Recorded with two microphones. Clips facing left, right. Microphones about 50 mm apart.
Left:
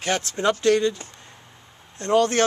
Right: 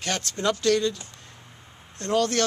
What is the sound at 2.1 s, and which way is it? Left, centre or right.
Speech, left.